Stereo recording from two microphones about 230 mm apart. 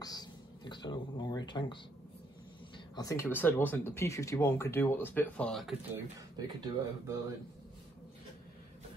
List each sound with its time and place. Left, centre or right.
0.0 s a sound: centre
3.0 s speech: centre
5.9 s speech: centre